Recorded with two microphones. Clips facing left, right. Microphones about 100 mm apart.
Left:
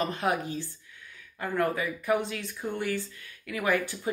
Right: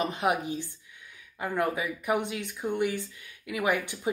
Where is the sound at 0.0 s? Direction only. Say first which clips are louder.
Right 1 dB; 15° right (ahead or behind).